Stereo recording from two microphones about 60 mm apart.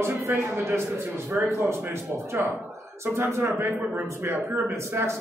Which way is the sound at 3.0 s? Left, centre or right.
Right.